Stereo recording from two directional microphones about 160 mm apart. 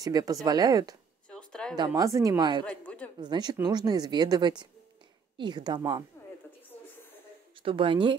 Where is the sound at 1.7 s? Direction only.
25° right (ahead or behind).